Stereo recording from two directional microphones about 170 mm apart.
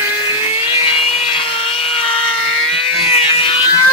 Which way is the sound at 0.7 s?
30° left (ahead or behind).